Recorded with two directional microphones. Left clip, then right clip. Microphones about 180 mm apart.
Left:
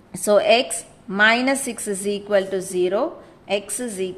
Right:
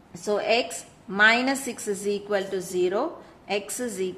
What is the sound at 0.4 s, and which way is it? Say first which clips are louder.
A woman's voice: left 6 dB; 25° left (ahead or behind).